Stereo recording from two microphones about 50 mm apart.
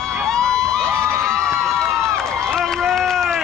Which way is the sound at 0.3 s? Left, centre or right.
Centre.